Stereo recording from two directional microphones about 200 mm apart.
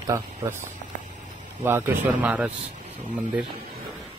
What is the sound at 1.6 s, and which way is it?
Speech, 10° right (ahead or behind).